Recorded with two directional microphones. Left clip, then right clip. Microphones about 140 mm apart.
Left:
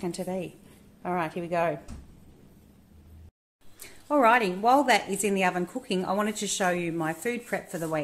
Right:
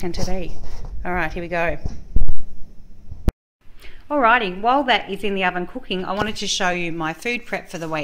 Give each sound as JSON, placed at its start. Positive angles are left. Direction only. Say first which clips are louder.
{"t": 0.0, "sound": "speech", "louder": "right 5 dB", "side_deg": 15}
{"t": 4.1, "sound": "a woman's voice", "louder": "right 5 dB", "side_deg": 20}
{"t": 6.3, "sound": "speech", "louder": "right 8 dB", "side_deg": 65}
{"t": 6.6, "sound": "a woman's voice", "louder": "right 3 dB", "side_deg": 5}